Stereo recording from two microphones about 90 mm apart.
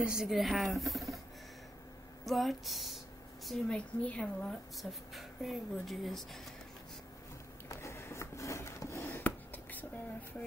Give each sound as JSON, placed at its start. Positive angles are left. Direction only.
{"t": 0.0, "sound": "speech", "side_deg": -5}
{"t": 2.2, "sound": "a woman's voice", "side_deg": 0}
{"t": 5.1, "sound": "speech", "side_deg": 0}
{"t": 7.6, "sound": "a sound", "side_deg": 30}